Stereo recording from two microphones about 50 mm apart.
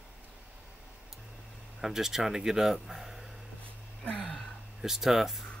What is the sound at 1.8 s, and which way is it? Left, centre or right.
Speech, centre.